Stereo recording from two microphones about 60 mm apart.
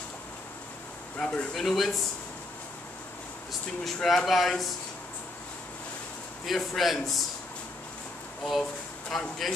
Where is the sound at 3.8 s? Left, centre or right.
Centre.